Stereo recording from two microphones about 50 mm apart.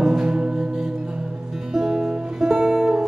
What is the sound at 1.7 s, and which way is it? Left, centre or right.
Music, centre.